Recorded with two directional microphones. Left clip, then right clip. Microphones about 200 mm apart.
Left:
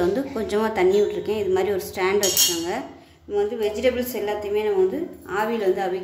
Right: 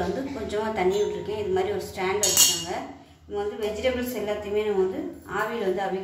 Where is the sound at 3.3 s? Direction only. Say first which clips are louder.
Left 5 dB; 55° left (ahead or behind).